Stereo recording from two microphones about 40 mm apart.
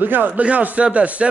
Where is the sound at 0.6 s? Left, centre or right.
Right.